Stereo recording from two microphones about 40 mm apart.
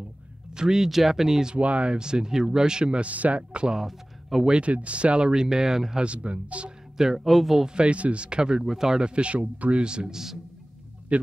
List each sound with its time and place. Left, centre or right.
0.5 s speech: centre
0.8 s speech: centre
1.5 s speech: right
3.0 s speech: right
3.7 s speech: centre
4.5 s speech: right; by 6.0 s centre
6.0 s speech: right
7.0 s speech: centre
7.6 s speech: right
9.1 s speech: right; by 10.4 s centre
11.1 s speech: right